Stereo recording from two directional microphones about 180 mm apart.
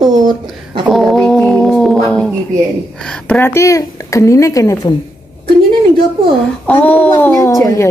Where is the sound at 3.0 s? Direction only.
5° left (ahead or behind).